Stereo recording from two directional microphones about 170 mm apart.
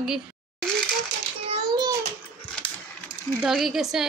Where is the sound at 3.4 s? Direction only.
Centre (ahead or behind).